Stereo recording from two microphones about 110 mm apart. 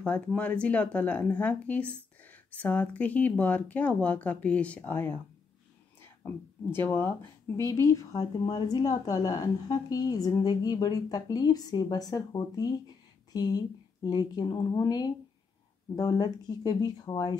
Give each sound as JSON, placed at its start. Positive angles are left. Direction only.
{"t": 0.4, "sound": "speech", "side_deg": 10}